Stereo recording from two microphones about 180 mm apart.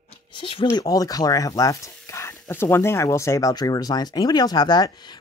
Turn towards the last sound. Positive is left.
turn(degrees=20)  # may be behind; listen again after turning